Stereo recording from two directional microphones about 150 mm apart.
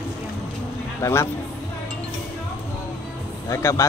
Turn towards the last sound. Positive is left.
turn(degrees=20)  # may be behind; listen again after turning